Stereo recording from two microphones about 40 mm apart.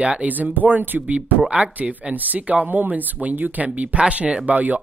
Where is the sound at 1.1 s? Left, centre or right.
Right.